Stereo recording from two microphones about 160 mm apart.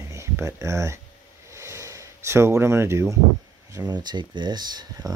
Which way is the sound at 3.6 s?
20° right (ahead or behind).